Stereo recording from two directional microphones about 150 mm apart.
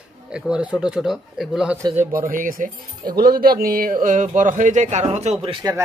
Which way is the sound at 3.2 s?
90° right.